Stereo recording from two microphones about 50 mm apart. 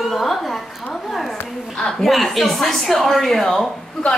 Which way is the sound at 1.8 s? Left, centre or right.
Centre.